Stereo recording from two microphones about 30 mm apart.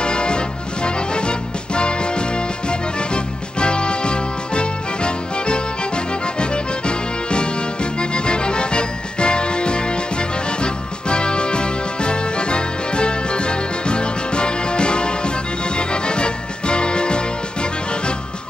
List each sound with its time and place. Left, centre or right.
0.0 s music: left